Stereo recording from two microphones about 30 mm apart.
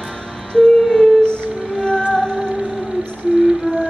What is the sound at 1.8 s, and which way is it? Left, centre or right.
Music, left.